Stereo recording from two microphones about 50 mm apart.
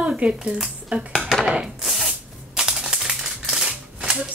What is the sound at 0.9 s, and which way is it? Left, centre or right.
Speech, right.